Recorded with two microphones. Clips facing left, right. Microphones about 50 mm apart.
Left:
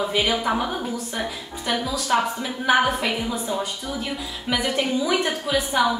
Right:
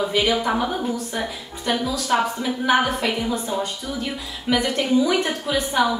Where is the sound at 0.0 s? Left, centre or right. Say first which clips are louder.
Right 2 dB; centre.